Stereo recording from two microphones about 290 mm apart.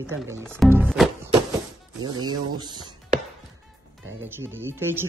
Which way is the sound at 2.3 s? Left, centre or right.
Centre.